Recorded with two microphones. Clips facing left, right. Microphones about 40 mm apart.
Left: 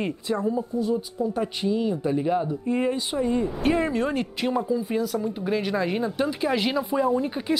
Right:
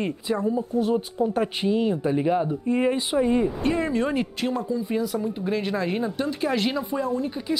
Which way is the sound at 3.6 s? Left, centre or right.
Centre.